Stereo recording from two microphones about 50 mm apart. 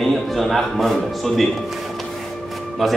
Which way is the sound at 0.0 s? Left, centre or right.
Centre.